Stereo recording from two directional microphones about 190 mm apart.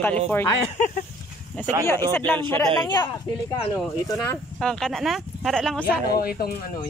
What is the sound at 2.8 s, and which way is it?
Speech, 20° left (ahead or behind).